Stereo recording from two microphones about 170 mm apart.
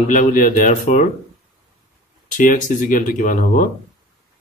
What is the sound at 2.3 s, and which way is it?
Speech, 50° left (ahead or behind).